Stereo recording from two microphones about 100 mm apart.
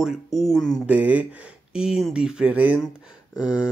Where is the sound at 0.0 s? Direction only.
Centre (ahead or behind).